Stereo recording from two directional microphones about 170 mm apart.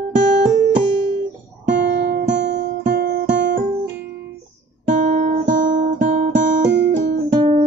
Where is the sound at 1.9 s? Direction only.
70° right (ahead or behind).